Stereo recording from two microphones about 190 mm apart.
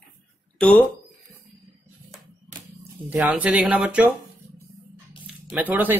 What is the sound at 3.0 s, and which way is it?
Speech, 10° right (ahead or behind).